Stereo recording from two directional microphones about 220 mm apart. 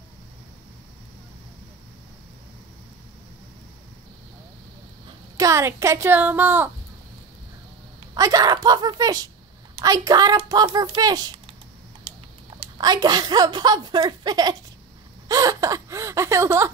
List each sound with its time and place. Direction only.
5.0 s speech: 15° right (ahead or behind)
8.1 s a woman's voice: 15° right (ahead or behind)
12.5 s a woman's voice: 20° right (ahead or behind)
15.2 s gasp: 15° right (ahead or behind)